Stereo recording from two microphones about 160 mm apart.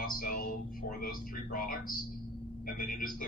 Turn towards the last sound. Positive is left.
turn(degrees=65)  # may be behind; listen again after turning